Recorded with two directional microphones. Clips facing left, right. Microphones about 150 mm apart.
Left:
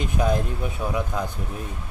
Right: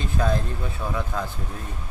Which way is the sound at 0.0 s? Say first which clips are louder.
Left 2 dB; 15° left (ahead or behind).